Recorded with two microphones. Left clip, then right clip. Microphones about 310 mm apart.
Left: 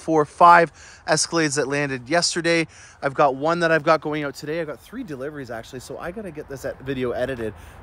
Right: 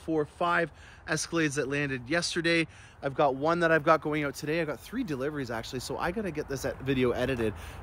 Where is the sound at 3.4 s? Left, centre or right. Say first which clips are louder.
Left 5 dB; left; by 7.6 s centre.